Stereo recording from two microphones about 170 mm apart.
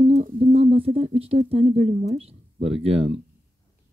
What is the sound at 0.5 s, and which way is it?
Speech, 35° right (ahead or behind).